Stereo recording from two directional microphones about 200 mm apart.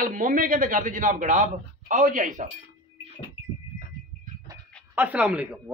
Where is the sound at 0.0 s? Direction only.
40° right (ahead or behind).